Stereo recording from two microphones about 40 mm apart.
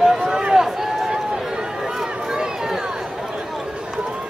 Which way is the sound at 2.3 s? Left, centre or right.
Centre.